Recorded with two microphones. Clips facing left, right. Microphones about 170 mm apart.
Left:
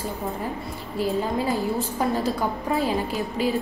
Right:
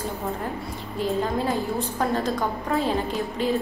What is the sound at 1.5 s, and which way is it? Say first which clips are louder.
A woman's voice: left 1 dB; 5° left (ahead or behind).